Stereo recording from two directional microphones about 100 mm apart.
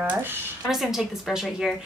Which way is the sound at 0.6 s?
5° right (ahead or behind).